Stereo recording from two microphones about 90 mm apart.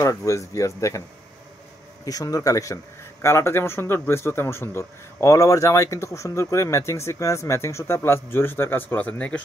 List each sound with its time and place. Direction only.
0.0 s speech: 35° left (ahead or behind)
2.0 s speech: 40° left (ahead or behind); by 9.4 s 15° left (ahead or behind)